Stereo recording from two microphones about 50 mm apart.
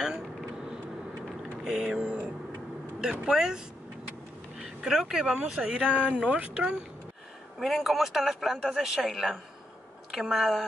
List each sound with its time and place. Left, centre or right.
0.0 s vehicle: centre
1.6 s speech: centre
3.3 s speech: centre
5.8 s speech: right
7.5 s a man's voice: centre